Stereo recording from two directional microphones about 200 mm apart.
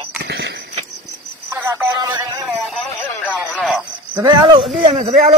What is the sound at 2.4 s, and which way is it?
Speech, centre (ahead or behind).